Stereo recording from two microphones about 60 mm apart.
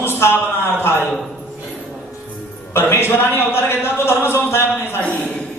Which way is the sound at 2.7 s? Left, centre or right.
Left.